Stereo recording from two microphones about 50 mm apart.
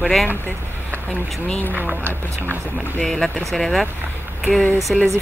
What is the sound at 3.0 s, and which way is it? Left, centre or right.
Speech, centre.